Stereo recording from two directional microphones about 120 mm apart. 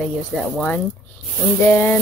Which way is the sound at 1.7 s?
15° left (ahead or behind).